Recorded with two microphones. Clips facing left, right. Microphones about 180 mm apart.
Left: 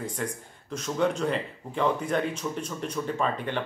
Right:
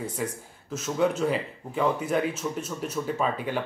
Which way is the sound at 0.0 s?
5° right (ahead or behind).